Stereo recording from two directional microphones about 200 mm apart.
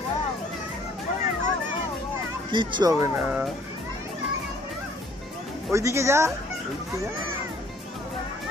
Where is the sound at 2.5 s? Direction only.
25° right (ahead or behind).